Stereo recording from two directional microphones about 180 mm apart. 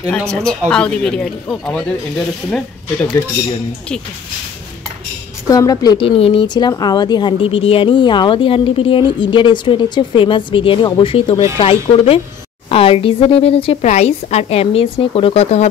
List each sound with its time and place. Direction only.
0.3 s speech: 5° left (ahead or behind)
5.5 s a woman's voice: 20° left (ahead or behind)